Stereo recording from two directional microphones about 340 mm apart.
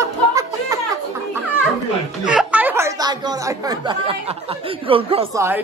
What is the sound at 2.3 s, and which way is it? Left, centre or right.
Speech, centre.